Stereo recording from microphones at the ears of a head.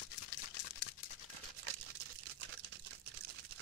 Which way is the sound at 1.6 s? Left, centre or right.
Right.